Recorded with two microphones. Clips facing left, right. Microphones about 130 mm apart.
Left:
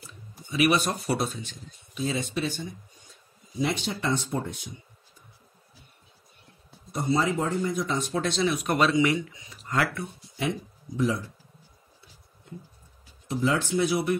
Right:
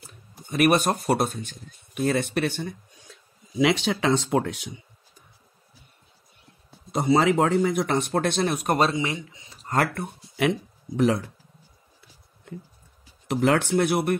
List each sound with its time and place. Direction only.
0.5 s speech: 50° right (ahead or behind); by 4.7 s 85° right
6.9 s speech: 80° right; by 9.0 s 40° right (ahead or behind)
9.0 s speech: 25° right (ahead or behind)
9.7 s speech: 45° right (ahead or behind)
11.0 s speech: 70° right (ahead or behind)
12.5 s speech: 85° right
13.3 s speech: 70° right (ahead or behind)